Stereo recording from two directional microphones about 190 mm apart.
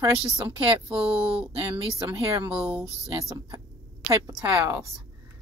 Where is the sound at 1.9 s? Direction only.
20° right (ahead or behind).